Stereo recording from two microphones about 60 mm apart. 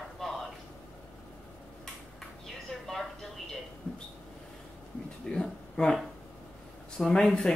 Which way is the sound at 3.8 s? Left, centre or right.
Left.